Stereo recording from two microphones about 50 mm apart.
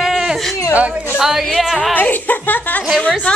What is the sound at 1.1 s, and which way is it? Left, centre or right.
Speech, centre.